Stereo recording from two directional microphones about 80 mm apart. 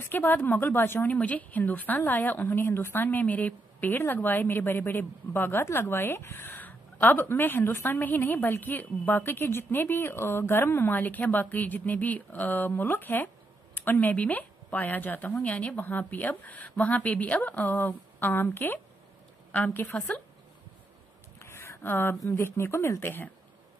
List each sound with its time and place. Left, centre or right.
0.0 s speech: left
21.4 s a sound: left
22.2 s speech: left